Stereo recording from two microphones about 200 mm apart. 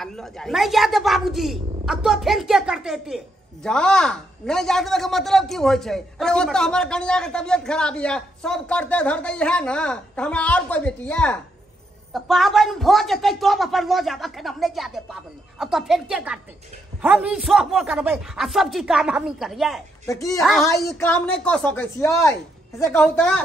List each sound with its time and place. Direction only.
0.0 s a man's voice: centre (ahead or behind)
20.1 s speech: 15° left (ahead or behind)